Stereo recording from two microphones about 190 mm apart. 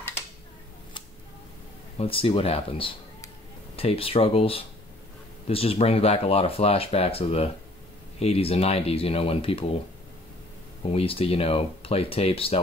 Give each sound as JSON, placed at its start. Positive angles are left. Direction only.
{"t": 2.0, "sound": "speech", "side_deg": 30}
{"t": 10.9, "sound": "speech", "side_deg": 30}